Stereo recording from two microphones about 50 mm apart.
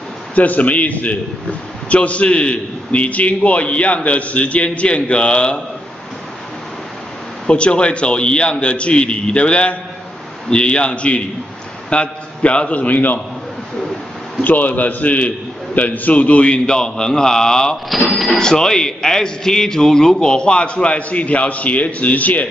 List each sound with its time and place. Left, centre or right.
0.3 s a man's voice: left
7.4 s a man's voice: left
13.7 s bird: centre
14.4 s a man's voice: left; by 17.7 s centre
17.8 s a man's voice: centre; by 22.5 s left